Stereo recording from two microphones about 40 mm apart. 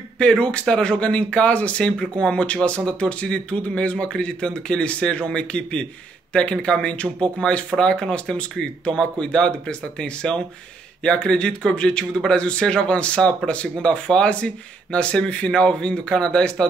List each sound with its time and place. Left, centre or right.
0.2 s speech: left
1.9 s speech: left